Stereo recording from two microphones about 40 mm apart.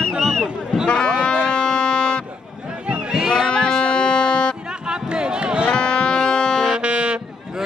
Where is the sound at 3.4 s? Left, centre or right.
Centre.